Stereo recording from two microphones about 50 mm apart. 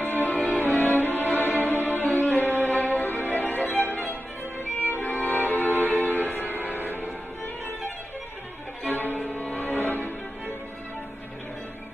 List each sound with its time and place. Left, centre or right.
0.0 s music: left
8.8 s music: left